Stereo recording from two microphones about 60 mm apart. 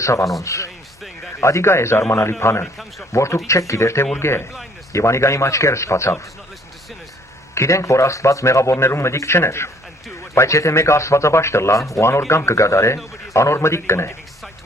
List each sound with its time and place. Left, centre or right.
0.0 s a man's voice: left
1.4 s a man's voice: left
7.5 s a man's voice: left
10.3 s a man's voice: left